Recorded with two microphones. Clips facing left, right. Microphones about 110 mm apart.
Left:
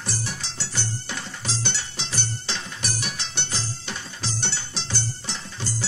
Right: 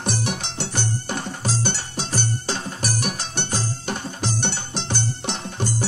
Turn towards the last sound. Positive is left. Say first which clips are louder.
# right 7 dB
turn(degrees=-55)  # may be behind; listen again after turning